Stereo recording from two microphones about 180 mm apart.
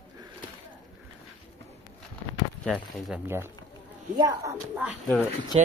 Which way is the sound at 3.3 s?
15° right (ahead or behind).